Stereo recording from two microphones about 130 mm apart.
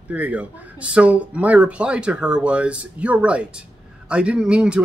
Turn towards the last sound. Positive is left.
turn(degrees=-5)  # may be behind; listen again after turning